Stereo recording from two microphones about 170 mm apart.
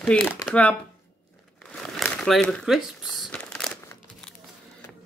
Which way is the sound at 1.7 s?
Centre (ahead or behind).